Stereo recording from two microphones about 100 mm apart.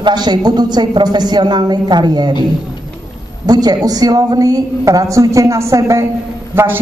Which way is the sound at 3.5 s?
40° right (ahead or behind).